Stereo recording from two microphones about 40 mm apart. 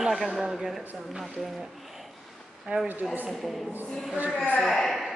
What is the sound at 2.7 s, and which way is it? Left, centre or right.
Speech, right.